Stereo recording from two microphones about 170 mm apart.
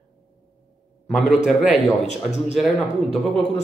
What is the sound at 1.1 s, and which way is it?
Speech, centre (ahead or behind).